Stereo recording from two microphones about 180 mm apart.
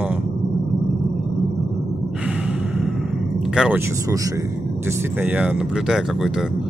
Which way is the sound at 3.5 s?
5° right (ahead or behind).